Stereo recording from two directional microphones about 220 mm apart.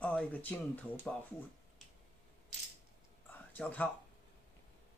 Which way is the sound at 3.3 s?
10° left (ahead or behind).